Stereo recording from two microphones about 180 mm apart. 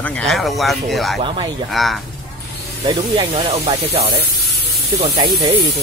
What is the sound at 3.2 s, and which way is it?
Speech, 30° right (ahead or behind).